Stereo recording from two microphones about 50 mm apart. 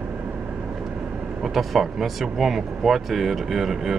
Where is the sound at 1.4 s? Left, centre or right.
Centre.